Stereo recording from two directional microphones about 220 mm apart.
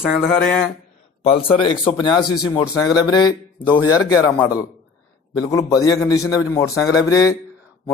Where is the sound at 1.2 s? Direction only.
25° left (ahead or behind).